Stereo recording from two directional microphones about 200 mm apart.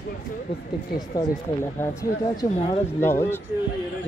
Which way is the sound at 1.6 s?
10° left (ahead or behind).